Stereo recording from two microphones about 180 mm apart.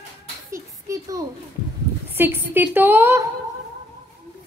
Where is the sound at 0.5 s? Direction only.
15° right (ahead or behind).